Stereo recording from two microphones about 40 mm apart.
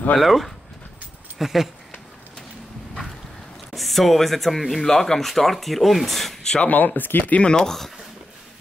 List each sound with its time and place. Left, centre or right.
0.2 s speech: centre
3.7 s speech: centre
4.8 s speech: centre
6.6 s speech: left
7.3 s speech: left
7.6 s speech: centre